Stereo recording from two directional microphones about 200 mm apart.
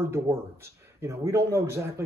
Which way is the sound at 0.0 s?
10° right (ahead or behind).